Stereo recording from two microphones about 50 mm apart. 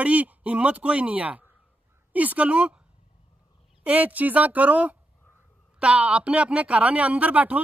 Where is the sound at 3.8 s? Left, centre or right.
Right.